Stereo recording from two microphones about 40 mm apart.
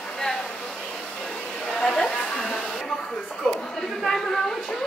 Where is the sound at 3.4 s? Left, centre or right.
Centre.